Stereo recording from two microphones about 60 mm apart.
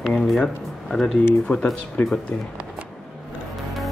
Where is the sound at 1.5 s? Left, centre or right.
Left.